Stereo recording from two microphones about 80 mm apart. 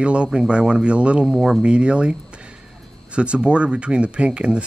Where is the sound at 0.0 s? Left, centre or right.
Centre.